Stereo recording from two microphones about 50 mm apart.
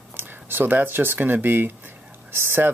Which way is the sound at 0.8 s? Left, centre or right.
Right.